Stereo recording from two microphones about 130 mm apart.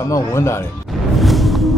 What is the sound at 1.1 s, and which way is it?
Music, centre (ahead or behind).